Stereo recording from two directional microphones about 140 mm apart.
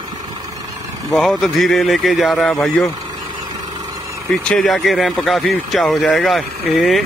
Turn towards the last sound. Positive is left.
turn(degrees=0)  # may be behind; listen again after turning